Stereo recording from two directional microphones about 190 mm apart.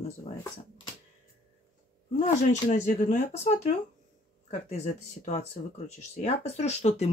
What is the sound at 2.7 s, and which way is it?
Speech, 40° left (ahead or behind).